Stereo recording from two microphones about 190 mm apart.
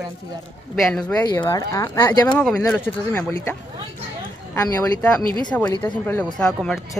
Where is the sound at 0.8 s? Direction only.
5° left (ahead or behind).